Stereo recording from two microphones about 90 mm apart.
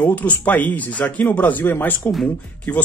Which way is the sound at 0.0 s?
15° left (ahead or behind).